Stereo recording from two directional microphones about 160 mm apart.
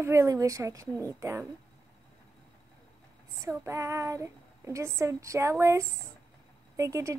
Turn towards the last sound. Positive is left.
turn(degrees=-20)  # may be behind; listen again after turning